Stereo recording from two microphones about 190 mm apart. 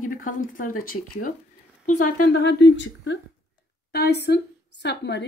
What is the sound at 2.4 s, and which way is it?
A woman's voice, 70° left (ahead or behind).